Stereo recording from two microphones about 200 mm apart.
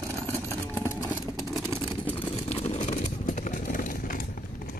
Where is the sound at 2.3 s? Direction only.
30° left (ahead or behind).